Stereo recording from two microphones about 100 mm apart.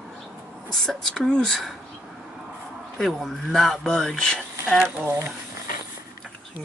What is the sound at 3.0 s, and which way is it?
Speech, centre (ahead or behind).